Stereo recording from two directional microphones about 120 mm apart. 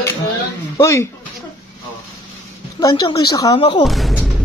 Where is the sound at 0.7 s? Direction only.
25° left (ahead or behind).